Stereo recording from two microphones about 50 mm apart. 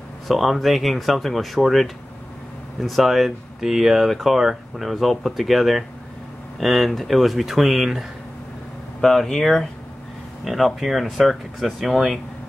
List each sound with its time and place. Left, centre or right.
0.3 s speech: centre
9.0 s speech: centre